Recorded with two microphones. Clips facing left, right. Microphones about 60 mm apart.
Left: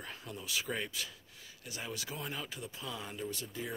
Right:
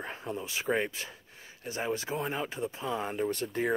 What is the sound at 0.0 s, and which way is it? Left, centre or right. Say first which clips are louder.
Speech: right 8 dB; right.